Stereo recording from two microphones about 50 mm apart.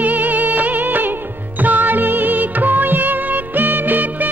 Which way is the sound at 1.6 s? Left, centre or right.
Right.